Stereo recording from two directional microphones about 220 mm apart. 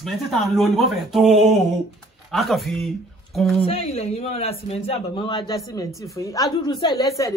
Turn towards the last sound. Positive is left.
turn(degrees=15)  # may be behind; listen again after turning